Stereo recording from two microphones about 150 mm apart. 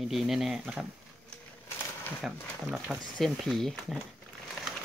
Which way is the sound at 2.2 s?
Centre (ahead or behind).